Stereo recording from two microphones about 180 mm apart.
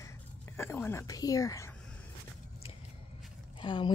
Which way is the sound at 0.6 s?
10° left (ahead or behind).